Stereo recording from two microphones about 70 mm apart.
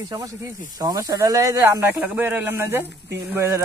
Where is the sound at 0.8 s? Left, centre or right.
Right.